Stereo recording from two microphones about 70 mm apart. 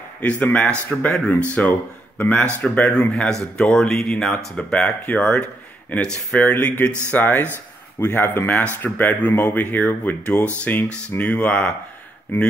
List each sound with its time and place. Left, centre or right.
0.2 s speech: left
3.3 s speech: centre
5.0 s speech: left